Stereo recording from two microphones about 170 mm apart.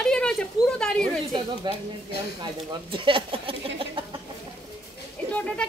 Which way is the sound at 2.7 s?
30° right (ahead or behind).